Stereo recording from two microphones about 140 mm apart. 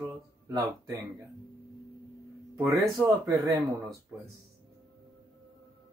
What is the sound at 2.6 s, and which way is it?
Speech, 20° right (ahead or behind).